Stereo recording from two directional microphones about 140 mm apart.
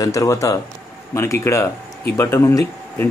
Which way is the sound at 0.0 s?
25° left (ahead or behind).